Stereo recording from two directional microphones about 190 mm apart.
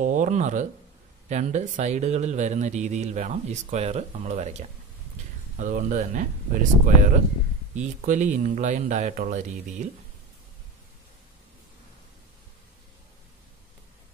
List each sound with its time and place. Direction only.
0.0 s speech: 40° right (ahead or behind)